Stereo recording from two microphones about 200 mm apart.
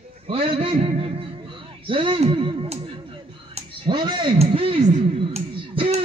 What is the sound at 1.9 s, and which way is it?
Speech, 25° right (ahead or behind).